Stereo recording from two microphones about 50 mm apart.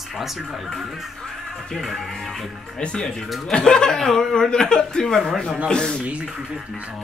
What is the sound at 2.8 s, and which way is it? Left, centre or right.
Speech, left.